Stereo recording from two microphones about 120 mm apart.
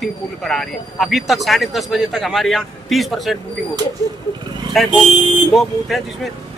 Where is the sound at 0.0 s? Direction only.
5° left (ahead or behind).